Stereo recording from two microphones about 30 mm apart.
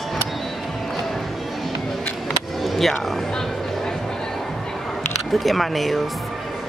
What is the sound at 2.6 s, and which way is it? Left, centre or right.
Vehicle, centre.